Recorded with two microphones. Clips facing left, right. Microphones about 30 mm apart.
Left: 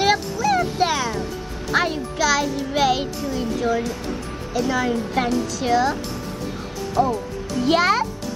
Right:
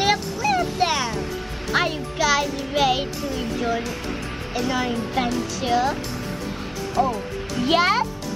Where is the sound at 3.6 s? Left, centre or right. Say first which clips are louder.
Left 3 dB; right.